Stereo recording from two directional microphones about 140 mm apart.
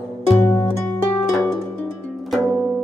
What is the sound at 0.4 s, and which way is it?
Music, 20° left (ahead or behind).